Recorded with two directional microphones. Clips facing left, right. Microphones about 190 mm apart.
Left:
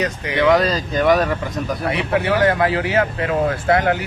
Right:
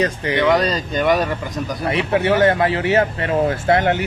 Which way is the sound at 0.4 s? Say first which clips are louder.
Left 2 dB; centre (ahead or behind).